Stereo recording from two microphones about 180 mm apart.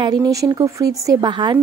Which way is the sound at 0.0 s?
20° right (ahead or behind).